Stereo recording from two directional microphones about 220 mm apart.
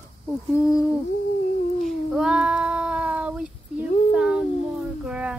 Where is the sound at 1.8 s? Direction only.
5° right (ahead or behind).